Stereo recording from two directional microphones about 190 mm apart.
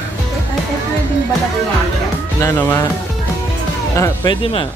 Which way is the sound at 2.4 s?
10° left (ahead or behind).